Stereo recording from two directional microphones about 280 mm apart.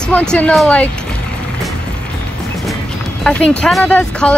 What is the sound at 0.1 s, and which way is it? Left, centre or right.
Speech, centre.